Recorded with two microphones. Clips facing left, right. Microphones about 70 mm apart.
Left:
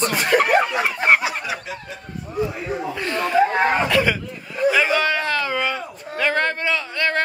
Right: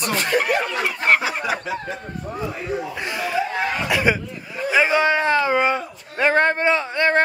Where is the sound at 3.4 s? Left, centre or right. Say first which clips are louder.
Left 8 dB; left.